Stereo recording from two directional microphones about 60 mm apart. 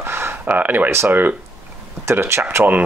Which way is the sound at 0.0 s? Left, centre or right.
Right.